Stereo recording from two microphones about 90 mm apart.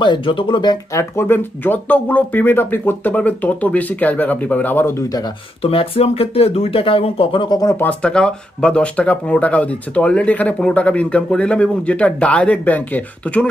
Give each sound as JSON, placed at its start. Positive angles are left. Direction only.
{"t": 0.0, "sound": "speech", "side_deg": 65}
{"t": 0.9, "sound": "speech", "side_deg": 30}
{"t": 5.6, "sound": "speech", "side_deg": 90}
{"t": 7.4, "sound": "speech", "side_deg": 45}
{"t": 7.8, "sound": "speech", "side_deg": 10}